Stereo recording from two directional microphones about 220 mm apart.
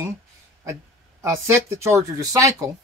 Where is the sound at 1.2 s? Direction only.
15° right (ahead or behind).